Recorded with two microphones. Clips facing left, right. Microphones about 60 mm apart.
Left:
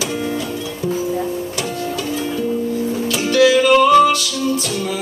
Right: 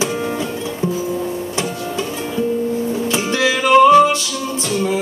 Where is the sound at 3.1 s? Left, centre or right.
Right.